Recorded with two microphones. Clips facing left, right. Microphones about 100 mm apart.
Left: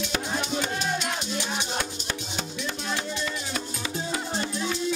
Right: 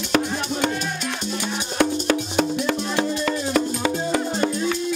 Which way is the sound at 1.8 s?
75° right (ahead or behind).